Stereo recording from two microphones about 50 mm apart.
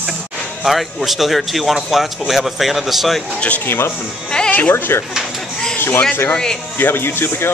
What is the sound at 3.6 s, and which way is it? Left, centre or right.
Speech, left.